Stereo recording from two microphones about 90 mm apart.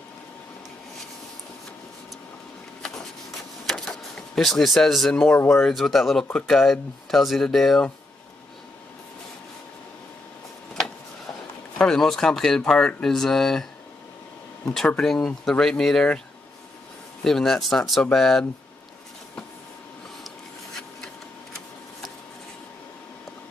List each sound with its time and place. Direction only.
3.6 s a sound: 5° left (ahead or behind)
5.3 s speech: 25° left (ahead or behind)
5.6 s speech: 5° left (ahead or behind)
11.8 s speech: 5° left (ahead or behind)
14.9 s speech: 10° left (ahead or behind)
17.2 s speech: 5° left (ahead or behind)